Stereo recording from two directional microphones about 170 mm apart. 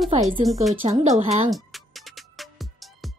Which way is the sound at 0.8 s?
30° right (ahead or behind).